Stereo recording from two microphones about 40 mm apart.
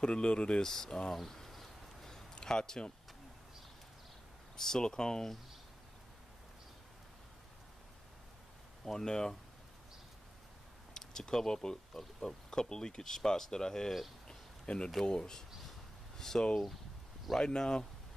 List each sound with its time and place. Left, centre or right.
0.0 s speech: left
0.7 s speech: centre
1.1 s insect: centre
2.4 s speech: centre
4.6 s speech: centre
8.8 s speech: centre
11.0 s speech: centre
14.2 s a sound: left
15.0 s speech: centre
17.5 s speech: centre